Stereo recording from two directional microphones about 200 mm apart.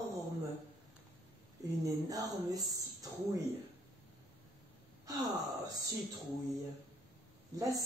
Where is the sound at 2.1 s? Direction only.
20° right (ahead or behind).